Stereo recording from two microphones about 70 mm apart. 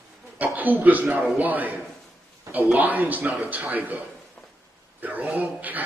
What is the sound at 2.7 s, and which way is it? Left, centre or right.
Speech, right.